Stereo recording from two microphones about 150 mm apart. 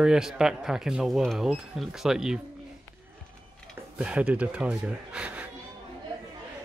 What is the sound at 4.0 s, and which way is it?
Speech, 5° right (ahead or behind).